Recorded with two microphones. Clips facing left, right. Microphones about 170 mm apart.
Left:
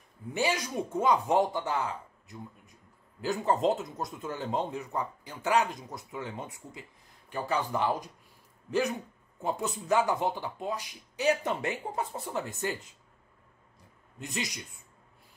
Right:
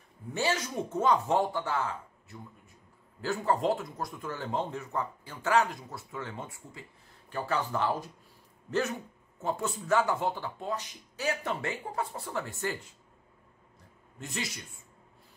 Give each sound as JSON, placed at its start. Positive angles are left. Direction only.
{"t": 0.3, "sound": "speech", "side_deg": 15}
{"t": 14.2, "sound": "speech", "side_deg": 15}